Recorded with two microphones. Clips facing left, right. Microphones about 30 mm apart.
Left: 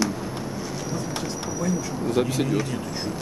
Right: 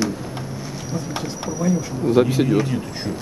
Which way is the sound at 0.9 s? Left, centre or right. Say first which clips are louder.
Right 5 dB; centre.